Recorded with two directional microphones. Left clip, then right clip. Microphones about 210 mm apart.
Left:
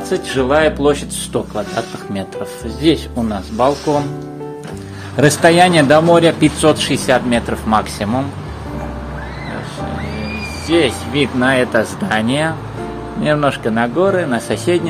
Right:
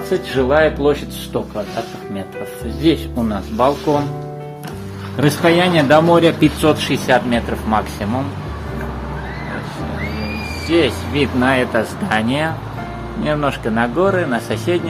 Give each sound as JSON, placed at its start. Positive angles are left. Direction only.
{"t": 0.1, "sound": "speech", "side_deg": 5}
{"t": 2.8, "sound": "speech", "side_deg": 10}
{"t": 5.1, "sound": "speech", "side_deg": 30}
{"t": 10.7, "sound": "speech", "side_deg": 15}